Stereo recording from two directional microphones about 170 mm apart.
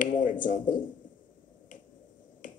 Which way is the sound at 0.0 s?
50° left (ahead or behind).